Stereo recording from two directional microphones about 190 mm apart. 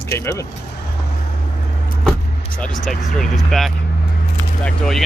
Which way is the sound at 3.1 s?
Centre (ahead or behind).